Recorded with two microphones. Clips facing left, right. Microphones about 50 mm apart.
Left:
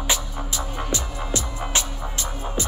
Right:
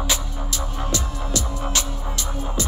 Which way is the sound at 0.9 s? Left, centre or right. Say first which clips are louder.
Right 1 dB; left.